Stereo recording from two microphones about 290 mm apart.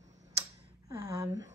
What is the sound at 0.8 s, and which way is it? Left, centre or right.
Speech, centre.